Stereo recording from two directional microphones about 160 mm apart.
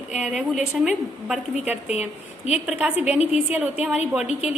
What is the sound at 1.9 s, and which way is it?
Speech, 40° left (ahead or behind).